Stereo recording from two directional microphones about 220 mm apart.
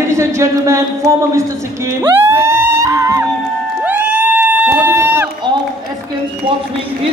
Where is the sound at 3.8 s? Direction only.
10° right (ahead or behind).